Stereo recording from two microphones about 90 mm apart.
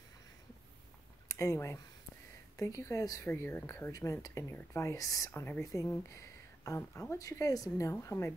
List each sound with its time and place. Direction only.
1.3 s speech: 35° left (ahead or behind)
3.3 s speech: 25° left (ahead or behind)
3.9 s speech: 40° left (ahead or behind)
5.3 s speech: 25° left (ahead or behind)